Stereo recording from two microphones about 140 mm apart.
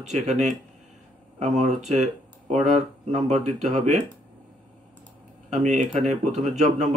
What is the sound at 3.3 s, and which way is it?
Speech, 55° right (ahead or behind).